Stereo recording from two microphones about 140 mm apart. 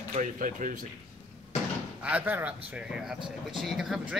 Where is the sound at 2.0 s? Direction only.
10° right (ahead or behind).